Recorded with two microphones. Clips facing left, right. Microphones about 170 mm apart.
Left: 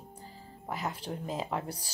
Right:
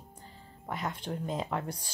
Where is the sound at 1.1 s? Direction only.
15° left (ahead or behind).